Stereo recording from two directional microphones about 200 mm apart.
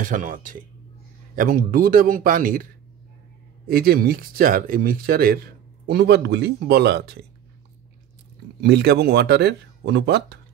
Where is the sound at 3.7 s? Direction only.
50° right (ahead or behind).